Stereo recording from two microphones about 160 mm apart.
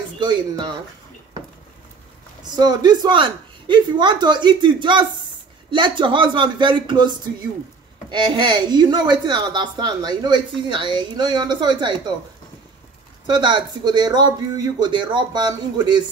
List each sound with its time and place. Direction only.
0.2 s speech: 25° right (ahead or behind)
2.5 s speech: 25° right (ahead or behind)
13.3 s speech: 30° right (ahead or behind)